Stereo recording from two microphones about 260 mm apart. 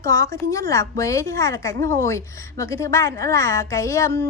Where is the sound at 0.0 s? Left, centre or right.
Centre.